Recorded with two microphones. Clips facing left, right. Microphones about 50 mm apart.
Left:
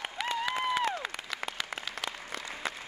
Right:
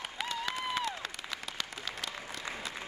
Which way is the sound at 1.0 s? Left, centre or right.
Centre.